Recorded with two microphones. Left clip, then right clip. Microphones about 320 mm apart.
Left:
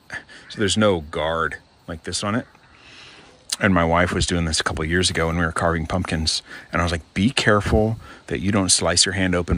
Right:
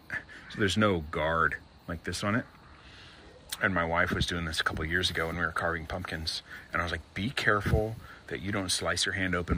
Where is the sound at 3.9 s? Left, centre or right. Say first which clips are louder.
Left 8 dB; centre.